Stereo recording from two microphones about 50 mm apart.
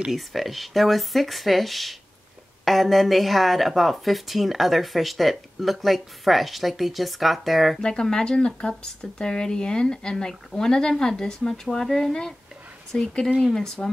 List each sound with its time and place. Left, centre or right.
0.1 s speech: centre
7.8 s speech: centre